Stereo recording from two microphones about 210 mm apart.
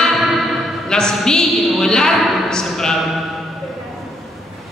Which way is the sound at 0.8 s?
5° left (ahead or behind).